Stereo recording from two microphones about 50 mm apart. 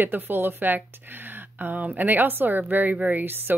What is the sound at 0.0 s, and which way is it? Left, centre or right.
A woman's voice, right.